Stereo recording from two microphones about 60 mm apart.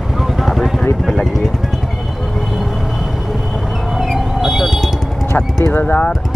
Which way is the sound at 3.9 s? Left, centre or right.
Centre.